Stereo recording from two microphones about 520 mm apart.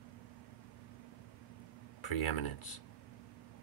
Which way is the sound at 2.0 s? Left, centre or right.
Left.